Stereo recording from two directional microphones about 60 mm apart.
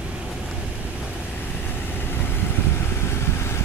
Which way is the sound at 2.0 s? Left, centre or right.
Left.